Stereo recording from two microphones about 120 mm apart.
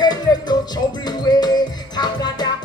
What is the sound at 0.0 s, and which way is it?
Music, 35° left (ahead or behind).